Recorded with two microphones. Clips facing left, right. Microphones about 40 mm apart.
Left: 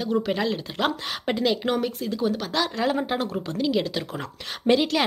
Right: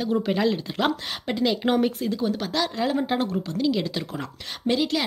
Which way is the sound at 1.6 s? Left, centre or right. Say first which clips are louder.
Right 3 dB; centre.